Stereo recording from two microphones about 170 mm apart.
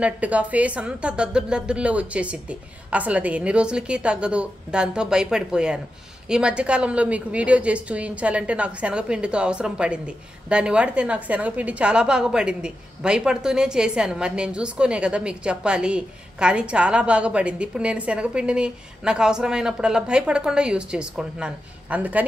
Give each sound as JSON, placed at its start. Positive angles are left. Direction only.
{"t": 0.0, "sound": "a woman's voice", "side_deg": -10}